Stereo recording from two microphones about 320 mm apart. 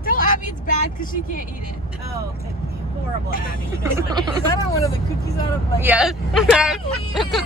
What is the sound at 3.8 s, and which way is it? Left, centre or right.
Speech, centre.